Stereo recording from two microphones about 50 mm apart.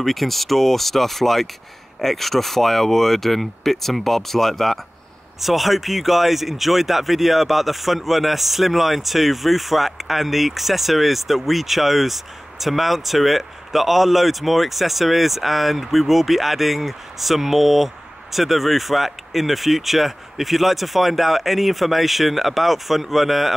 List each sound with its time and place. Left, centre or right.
0.0 s speech: centre